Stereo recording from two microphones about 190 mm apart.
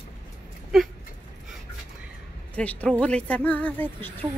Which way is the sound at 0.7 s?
Centre (ahead or behind).